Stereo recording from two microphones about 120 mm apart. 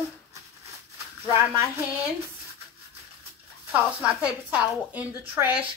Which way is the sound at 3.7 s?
10° right (ahead or behind).